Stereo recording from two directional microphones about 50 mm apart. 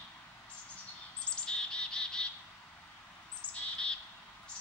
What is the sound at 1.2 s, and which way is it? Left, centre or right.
Bird, centre.